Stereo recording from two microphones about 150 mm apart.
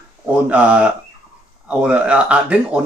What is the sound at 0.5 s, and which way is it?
Speech, 10° right (ahead or behind).